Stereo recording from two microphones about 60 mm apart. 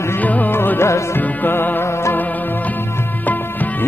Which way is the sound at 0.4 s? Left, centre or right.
Left.